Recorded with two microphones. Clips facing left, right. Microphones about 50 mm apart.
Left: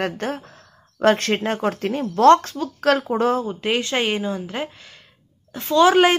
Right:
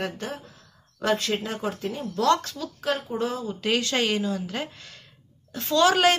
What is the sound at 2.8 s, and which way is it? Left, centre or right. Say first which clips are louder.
Speech: left 9 dB; left.